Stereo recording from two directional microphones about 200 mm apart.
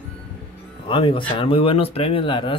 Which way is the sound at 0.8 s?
25° left (ahead or behind).